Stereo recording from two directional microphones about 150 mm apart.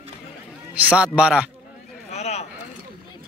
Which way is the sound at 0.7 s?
10° right (ahead or behind).